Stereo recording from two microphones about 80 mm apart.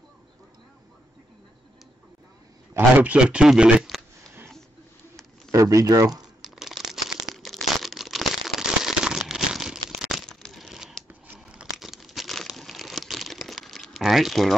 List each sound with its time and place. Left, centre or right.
3.0 s speech: centre
5.5 s speech: right
6.2 s crumpling: centre
7.3 s a sound: centre
11.3 s crumpling: centre